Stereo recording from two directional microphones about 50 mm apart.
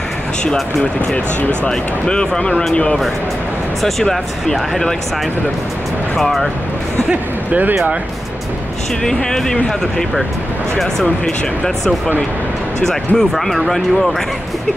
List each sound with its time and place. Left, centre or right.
1.7 s speech: centre
3.8 s speech: centre
6.1 s speech: centre
9.0 s speech: centre
11.2 s speech: centre